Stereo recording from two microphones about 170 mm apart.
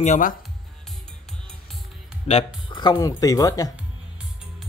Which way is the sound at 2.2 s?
35° left (ahead or behind).